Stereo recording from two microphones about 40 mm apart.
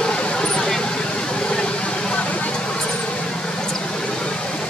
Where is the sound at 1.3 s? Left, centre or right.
Left.